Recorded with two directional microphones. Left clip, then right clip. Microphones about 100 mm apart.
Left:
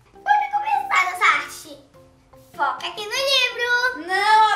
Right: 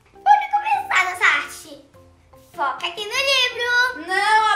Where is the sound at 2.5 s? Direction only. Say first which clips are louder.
Even; 10° right (ahead or behind).